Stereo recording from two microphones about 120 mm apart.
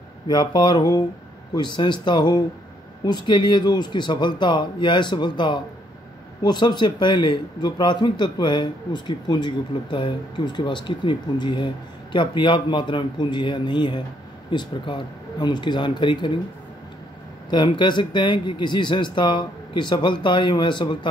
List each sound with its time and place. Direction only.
0.3 s speech: 35° left (ahead or behind)
17.5 s speech: 40° left (ahead or behind)